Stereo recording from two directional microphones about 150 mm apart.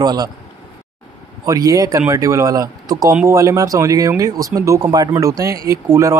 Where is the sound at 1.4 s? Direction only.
20° right (ahead or behind).